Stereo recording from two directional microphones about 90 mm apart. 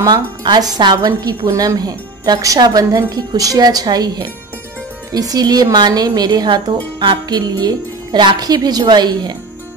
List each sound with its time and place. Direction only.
0.0 s a woman's voice: 55° right (ahead or behind)
1.5 s speech: 35° right (ahead or behind)
1.8 s a woman's voice: 45° right (ahead or behind)